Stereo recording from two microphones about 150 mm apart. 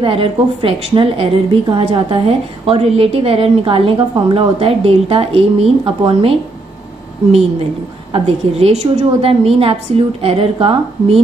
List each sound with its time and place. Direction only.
0.0 s a woman's voice: 40° right (ahead or behind)
8.1 s a woman's voice: 45° right (ahead or behind)